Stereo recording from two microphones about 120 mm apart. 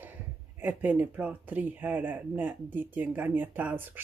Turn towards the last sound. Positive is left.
turn(degrees=-15)  # may be behind; listen again after turning